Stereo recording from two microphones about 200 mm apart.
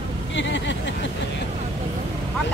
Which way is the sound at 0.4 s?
65° left (ahead or behind).